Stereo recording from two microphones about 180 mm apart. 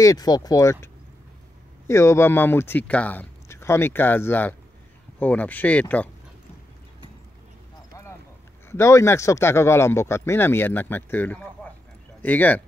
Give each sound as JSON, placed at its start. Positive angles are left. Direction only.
{"t": 0.0, "sound": "speech", "side_deg": 20}
{"t": 1.9, "sound": "speech", "side_deg": 15}
{"t": 8.6, "sound": "speech", "side_deg": 15}